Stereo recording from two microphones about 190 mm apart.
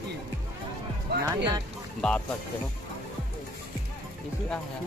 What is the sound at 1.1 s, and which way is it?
Speech, 55° right (ahead or behind).